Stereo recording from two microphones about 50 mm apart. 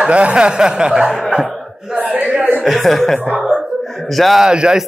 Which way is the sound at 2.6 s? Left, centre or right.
Centre.